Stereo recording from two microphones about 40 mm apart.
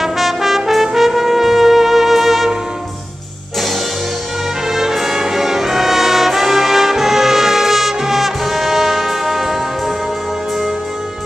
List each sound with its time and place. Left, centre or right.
0.0 s brass instrument: centre
4.6 s music: centre